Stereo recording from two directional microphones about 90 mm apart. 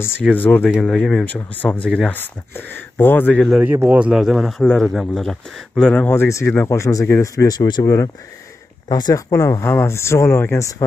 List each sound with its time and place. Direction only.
0.2 s speech: 15° left (ahead or behind)
0.7 s speech: 5° left (ahead or behind)
1.2 s speech: 20° left (ahead or behind)
3.6 s speech: 20° right (ahead or behind)
4.0 s speech: 5° right (ahead or behind); by 6.0 s 10° left (ahead or behind)
6.0 s speech: 30° left (ahead or behind); by 9.2 s 50° left (ahead or behind)
9.3 s speech: 35° left (ahead or behind)